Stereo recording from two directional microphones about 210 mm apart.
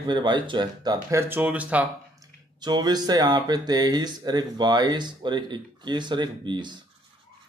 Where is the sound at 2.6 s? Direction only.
20° right (ahead or behind).